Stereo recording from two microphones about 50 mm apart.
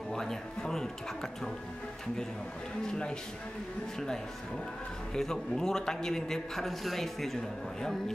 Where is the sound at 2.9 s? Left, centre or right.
Centre.